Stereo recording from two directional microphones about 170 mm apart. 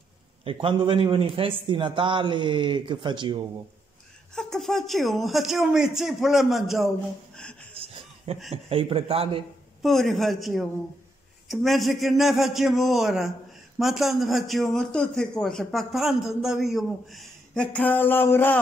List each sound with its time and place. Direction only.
0.4 s a man's voice: 30° right (ahead or behind)
4.4 s a man's voice: 5° left (ahead or behind)
7.8 s chuckle: 35° right (ahead or behind)
8.3 s a man's voice: 35° right (ahead or behind)
9.8 s a man's voice: centre (ahead or behind)